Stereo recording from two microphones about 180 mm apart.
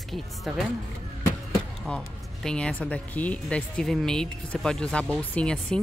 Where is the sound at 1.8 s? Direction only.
5° left (ahead or behind).